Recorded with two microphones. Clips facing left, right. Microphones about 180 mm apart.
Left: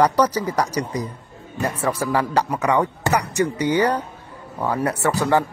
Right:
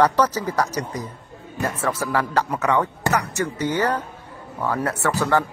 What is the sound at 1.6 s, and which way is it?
A man's voice, 15° left (ahead or behind).